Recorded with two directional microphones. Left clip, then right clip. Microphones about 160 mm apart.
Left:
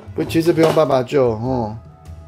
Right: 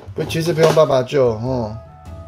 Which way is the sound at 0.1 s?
20° left (ahead or behind).